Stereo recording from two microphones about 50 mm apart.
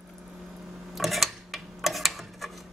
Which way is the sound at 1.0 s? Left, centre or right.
Centre.